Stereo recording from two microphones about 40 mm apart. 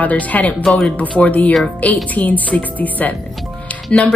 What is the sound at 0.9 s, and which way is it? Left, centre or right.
Speech, left.